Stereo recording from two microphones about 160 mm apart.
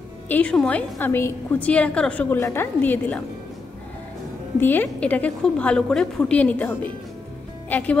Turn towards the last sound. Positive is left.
turn(degrees=10)  # may be behind; listen again after turning